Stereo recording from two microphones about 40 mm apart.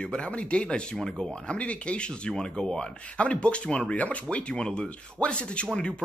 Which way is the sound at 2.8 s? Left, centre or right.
Left.